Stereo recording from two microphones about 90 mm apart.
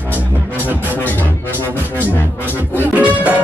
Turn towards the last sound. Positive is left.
turn(degrees=-20)  # may be behind; listen again after turning